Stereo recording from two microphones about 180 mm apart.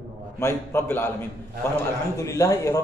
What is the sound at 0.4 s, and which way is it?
Speech, 15° left (ahead or behind).